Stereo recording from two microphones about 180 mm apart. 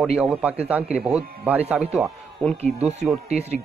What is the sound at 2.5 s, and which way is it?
Speech, 35° right (ahead or behind).